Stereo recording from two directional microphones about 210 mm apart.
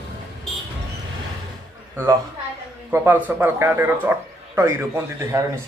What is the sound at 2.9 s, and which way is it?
Speech, 10° right (ahead or behind).